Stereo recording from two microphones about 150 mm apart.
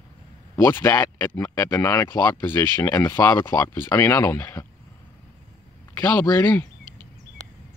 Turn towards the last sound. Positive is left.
turn(degrees=15)  # may be behind; listen again after turning